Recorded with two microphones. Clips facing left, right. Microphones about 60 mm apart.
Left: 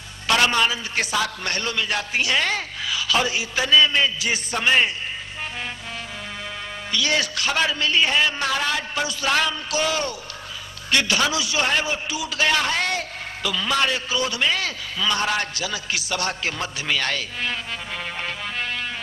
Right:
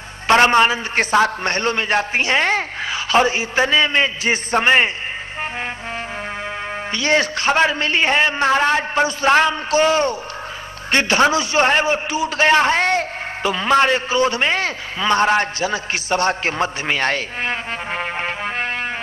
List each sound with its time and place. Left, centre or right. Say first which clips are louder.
0.3 s a man's voice: right 7 dB; right
6.9 s a man's voice: right 5 dB; right